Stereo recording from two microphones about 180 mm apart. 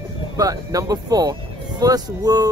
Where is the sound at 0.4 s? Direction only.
20° right (ahead or behind).